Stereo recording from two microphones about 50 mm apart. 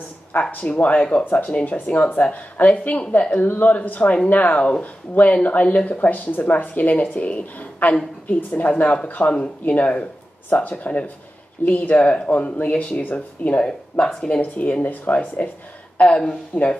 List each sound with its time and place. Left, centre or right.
0.3 s speech: left
13.6 s speech: centre
16.5 s speech: left